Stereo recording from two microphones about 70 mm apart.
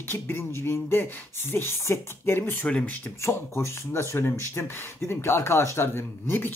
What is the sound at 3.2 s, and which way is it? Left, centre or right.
Music, left.